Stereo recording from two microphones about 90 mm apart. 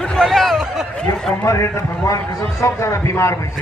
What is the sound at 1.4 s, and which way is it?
A man's voice, 35° left (ahead or behind).